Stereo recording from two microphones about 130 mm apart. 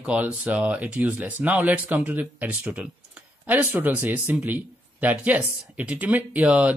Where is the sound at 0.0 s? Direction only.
10° right (ahead or behind).